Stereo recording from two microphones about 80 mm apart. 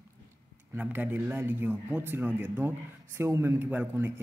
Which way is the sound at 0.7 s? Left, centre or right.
Right.